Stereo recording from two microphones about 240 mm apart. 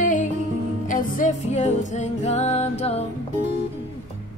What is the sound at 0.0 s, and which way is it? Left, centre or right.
Music, left.